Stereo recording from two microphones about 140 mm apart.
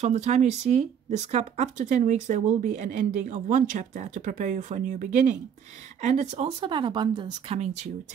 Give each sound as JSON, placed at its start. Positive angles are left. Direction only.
{"t": 0.0, "sound": "speech", "side_deg": -50}
{"t": 6.6, "sound": "a woman's voice", "side_deg": -35}
{"t": 7.5, "sound": "speech", "side_deg": -55}